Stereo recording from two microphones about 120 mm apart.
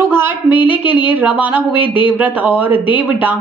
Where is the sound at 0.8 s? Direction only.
15° right (ahead or behind).